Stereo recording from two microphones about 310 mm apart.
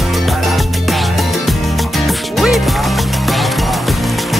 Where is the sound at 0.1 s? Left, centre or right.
Centre.